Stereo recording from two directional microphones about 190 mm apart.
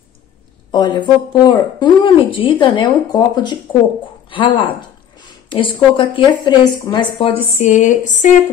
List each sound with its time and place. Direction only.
0.7 s a woman's voice: 25° left (ahead or behind); by 8.3 s 40° left (ahead or behind)